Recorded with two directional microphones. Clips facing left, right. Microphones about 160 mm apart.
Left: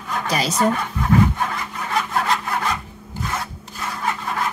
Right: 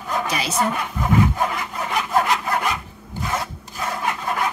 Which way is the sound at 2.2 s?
15° right (ahead or behind).